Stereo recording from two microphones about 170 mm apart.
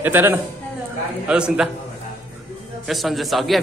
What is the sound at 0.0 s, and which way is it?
A man's voice, 10° right (ahead or behind).